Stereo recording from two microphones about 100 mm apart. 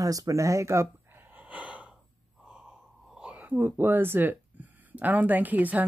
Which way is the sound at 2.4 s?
10° right (ahead or behind).